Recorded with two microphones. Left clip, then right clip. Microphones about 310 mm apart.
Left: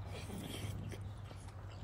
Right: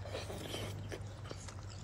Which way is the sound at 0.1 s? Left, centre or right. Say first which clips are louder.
Right 5 dB; right.